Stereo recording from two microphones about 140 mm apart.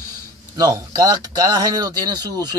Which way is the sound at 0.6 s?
25° right (ahead or behind).